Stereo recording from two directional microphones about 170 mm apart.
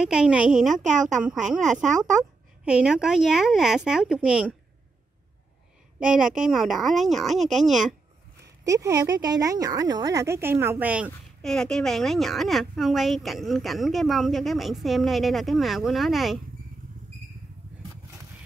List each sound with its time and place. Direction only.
0.0 s speech: 5° right (ahead or behind)
2.6 s speech: 5° right (ahead or behind)
5.9 s speech: 5° right (ahead or behind)
8.6 s speech: 20° right (ahead or behind)
11.4 s speech: 5° left (ahead or behind)